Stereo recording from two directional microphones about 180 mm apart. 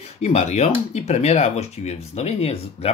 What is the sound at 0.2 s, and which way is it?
Speech, 40° left (ahead or behind).